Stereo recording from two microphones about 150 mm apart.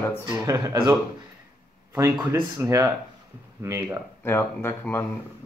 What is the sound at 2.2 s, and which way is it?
Speech, 20° right (ahead or behind).